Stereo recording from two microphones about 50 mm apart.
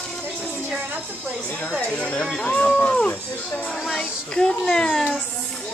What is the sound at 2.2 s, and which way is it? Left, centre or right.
Speech, centre.